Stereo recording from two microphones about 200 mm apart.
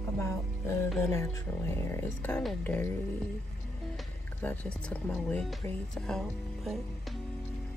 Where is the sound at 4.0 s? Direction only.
5° left (ahead or behind).